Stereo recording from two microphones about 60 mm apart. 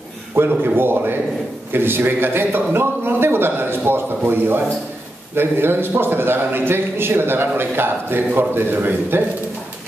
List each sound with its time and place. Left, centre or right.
0.4 s a man's voice: right